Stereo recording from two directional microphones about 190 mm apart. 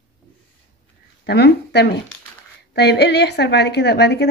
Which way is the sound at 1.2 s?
60° left (ahead or behind).